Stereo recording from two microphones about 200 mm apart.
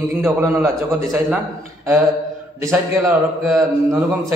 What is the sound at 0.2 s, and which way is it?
Mantra, 10° right (ahead or behind).